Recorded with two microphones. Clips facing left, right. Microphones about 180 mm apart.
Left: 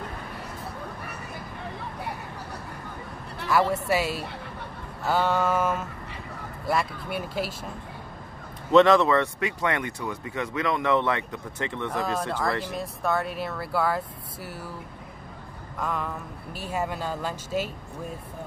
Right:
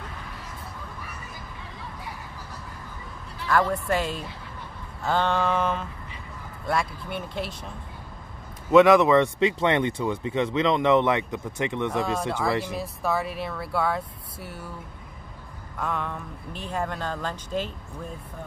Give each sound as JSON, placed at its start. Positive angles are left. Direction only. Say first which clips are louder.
{"t": 1.6, "sound": "vehicle", "louder": "left 6 dB", "side_deg": 65}
{"t": 3.4, "sound": "speech", "louder": "even", "side_deg": 10}
{"t": 8.7, "sound": "speech", "louder": "right 2 dB", "side_deg": -10}
{"t": 12.4, "sound": "speech", "louder": "right 2 dB", "side_deg": -10}
{"t": 15.8, "sound": "speech", "louder": "even", "side_deg": 0}